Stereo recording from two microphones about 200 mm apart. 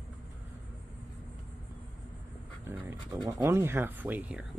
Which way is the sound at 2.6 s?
10° right (ahead or behind).